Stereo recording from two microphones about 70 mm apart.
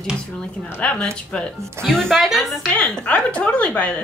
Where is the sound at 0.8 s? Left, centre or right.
Centre.